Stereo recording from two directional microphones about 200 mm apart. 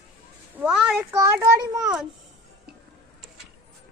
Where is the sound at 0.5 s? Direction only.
5° right (ahead or behind).